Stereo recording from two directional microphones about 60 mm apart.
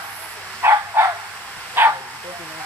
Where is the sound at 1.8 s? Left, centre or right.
Right.